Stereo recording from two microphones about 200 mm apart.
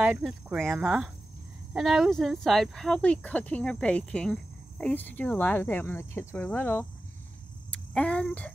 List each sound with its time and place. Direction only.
0.0 s speech: 5° right (ahead or behind)